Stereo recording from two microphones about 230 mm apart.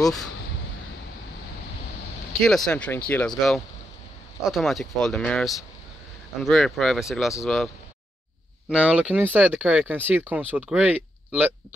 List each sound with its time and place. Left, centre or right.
0.0 s speech: centre
2.4 s speech: centre